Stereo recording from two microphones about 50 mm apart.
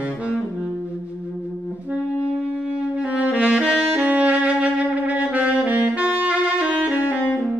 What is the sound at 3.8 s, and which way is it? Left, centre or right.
Music, right.